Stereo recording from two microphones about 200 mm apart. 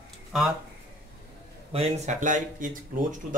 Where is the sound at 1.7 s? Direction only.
30° right (ahead or behind).